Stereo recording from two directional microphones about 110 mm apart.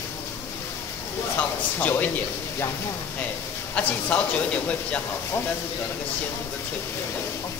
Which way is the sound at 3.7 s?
10° left (ahead or behind).